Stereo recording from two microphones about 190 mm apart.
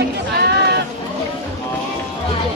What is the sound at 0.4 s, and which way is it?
Music, 60° right (ahead or behind).